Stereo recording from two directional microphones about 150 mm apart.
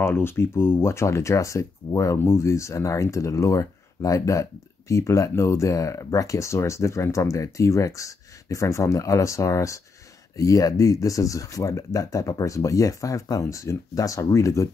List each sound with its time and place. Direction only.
0.0 s speech: 15° left (ahead or behind)